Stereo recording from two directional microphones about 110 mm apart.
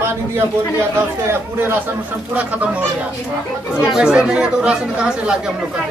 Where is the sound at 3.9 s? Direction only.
5° right (ahead or behind).